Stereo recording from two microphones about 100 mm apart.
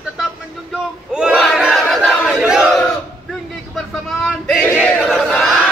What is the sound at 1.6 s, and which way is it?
Chatter, centre (ahead or behind).